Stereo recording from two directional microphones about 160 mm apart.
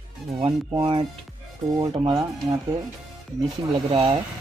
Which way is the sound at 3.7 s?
35° right (ahead or behind).